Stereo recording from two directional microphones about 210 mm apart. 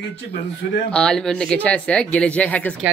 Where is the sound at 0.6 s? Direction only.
45° left (ahead or behind).